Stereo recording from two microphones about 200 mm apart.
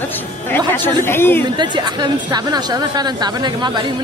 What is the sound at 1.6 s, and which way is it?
A woman's voice, 20° right (ahead or behind).